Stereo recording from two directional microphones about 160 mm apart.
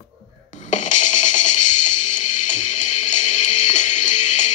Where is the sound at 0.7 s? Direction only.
50° left (ahead or behind).